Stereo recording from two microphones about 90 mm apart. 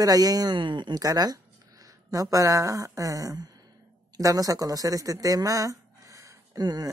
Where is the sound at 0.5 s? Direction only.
60° right (ahead or behind).